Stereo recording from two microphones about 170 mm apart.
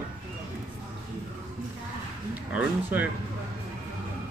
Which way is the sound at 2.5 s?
10° right (ahead or behind).